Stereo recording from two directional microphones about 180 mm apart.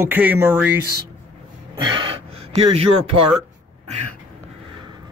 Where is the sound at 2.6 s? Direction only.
35° right (ahead or behind).